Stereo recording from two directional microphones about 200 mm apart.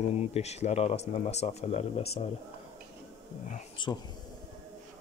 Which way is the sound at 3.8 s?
25° left (ahead or behind).